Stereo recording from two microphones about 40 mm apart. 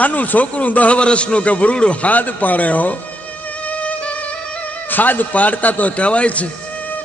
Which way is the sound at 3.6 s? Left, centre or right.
Left.